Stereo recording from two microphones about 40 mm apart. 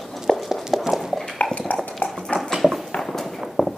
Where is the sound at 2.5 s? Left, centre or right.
Centre.